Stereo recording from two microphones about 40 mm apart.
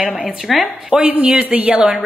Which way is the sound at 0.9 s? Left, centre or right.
Centre.